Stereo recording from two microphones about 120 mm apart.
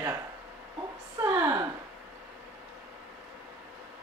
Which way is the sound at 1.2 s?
25° right (ahead or behind).